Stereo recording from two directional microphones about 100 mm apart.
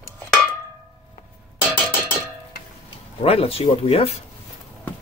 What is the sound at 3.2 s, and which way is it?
Speech, 75° left (ahead or behind).